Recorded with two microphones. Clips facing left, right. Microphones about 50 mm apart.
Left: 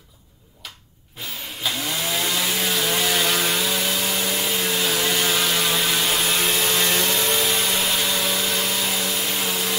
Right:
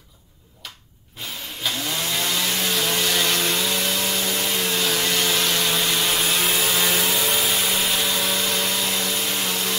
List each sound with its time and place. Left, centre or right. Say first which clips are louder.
1.6 s chainsaw: even; centre